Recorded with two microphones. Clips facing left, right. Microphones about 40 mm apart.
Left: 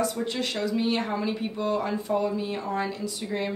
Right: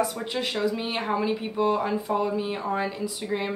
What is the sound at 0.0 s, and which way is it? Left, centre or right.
A woman's voice, centre.